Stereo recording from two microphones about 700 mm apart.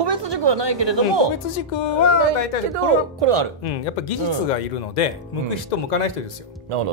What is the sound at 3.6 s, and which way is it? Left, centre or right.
Speech, left.